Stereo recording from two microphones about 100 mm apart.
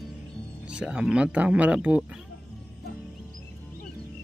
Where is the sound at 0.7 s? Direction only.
10° right (ahead or behind).